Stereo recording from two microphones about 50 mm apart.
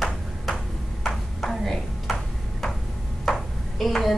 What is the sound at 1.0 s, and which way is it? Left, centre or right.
Ping, centre.